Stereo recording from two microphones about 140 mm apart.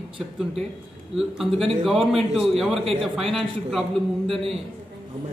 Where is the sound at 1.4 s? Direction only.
Centre (ahead or behind).